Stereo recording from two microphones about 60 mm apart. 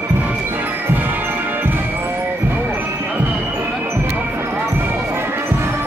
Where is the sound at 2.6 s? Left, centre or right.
Right.